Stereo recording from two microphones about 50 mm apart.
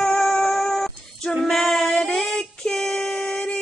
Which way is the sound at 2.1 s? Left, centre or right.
Centre.